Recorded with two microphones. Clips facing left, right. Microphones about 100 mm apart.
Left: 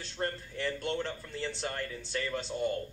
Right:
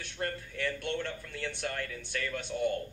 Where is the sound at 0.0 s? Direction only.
30° left (ahead or behind).